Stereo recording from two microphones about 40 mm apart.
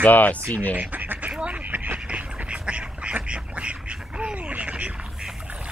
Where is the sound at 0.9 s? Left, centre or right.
Right.